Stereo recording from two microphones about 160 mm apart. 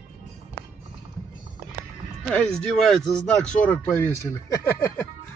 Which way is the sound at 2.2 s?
5° left (ahead or behind).